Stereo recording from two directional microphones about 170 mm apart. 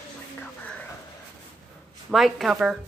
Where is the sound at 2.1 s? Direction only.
Centre (ahead or behind).